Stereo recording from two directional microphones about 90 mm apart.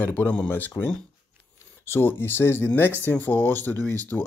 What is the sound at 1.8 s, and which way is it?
Speech, 25° left (ahead or behind).